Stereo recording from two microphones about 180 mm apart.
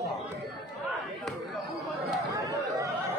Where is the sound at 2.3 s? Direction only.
20° right (ahead or behind).